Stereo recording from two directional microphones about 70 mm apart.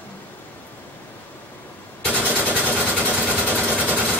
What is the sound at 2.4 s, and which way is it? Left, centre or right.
Sewing machine, right.